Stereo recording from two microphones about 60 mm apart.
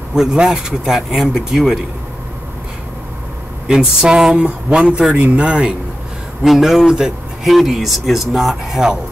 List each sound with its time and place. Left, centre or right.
0.1 s speech: centre
3.6 s speech: centre
6.4 s speech: centre